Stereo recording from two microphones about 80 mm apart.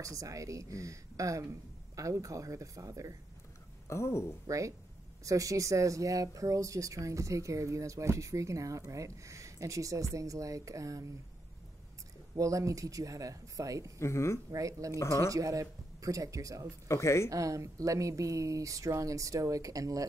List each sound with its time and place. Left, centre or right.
0.0 s speech: right
3.8 s speech: left
4.5 s speech: right
12.4 s speech: right
13.9 s speech: left
14.5 s speech: right
16.8 s speech: left
17.3 s speech: right